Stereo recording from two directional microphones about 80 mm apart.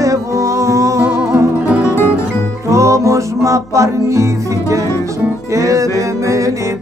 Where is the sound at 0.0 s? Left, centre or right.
Right.